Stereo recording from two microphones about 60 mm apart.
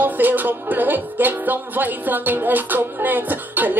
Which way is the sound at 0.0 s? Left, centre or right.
Right.